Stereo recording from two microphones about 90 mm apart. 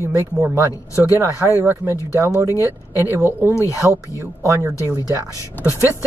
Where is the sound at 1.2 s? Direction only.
30° right (ahead or behind).